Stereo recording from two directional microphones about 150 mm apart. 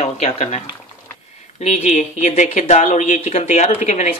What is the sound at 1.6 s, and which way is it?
Speech, 50° left (ahead or behind).